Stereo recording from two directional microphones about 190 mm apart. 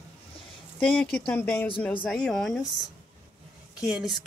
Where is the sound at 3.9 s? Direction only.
Centre (ahead or behind).